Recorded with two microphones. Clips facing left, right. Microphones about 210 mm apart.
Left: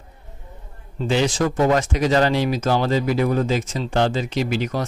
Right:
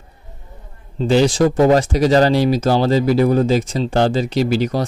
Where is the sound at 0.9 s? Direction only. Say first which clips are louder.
Right 6 dB; 35° right (ahead or behind).